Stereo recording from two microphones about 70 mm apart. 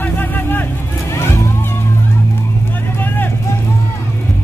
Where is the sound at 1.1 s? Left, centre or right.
Left.